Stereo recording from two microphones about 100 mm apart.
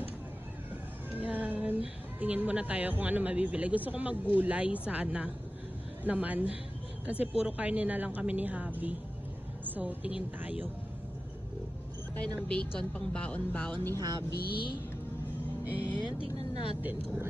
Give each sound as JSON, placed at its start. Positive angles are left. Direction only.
{"t": 1.1, "sound": "a woman's voice", "side_deg": -15}
{"t": 12.2, "sound": "speech", "side_deg": 10}
{"t": 13.9, "sound": "vehicle", "side_deg": -40}
{"t": 15.7, "sound": "speech", "side_deg": 20}